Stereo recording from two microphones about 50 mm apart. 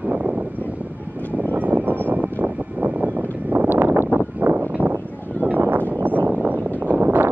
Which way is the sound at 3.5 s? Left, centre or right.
Right.